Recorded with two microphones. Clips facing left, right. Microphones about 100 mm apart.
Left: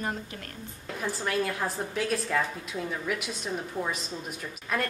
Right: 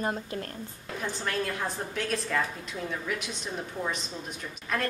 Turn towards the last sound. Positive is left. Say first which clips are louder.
# left 1 dB
turn(degrees=5)  # may be behind; listen again after turning